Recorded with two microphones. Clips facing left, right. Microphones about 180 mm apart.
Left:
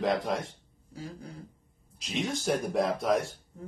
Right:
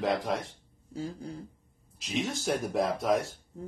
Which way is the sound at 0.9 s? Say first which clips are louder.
Right 5 dB; 30° right (ahead or behind).